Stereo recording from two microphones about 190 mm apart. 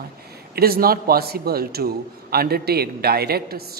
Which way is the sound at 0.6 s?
50° right (ahead or behind).